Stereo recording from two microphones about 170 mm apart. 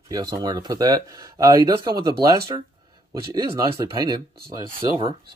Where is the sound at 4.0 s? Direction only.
20° right (ahead or behind).